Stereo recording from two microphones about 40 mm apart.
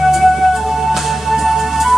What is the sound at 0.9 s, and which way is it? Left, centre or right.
Music, centre.